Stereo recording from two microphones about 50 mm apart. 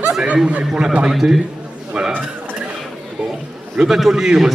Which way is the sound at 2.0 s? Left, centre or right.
Centre.